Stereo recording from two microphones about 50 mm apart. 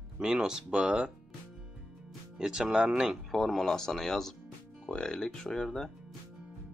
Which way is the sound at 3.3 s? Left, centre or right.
Centre.